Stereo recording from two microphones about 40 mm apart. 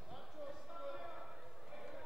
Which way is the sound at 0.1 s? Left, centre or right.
Centre.